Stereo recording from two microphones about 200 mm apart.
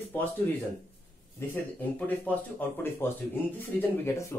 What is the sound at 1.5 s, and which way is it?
Speech, 10° left (ahead or behind).